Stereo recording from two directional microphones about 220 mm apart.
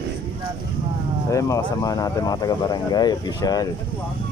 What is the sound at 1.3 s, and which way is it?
Speech, 15° left (ahead or behind).